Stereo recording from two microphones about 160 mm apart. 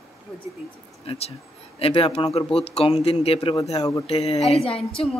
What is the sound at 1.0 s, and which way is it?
Speech, 40° left (ahead or behind).